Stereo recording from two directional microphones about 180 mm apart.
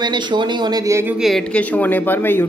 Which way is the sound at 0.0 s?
25° right (ahead or behind).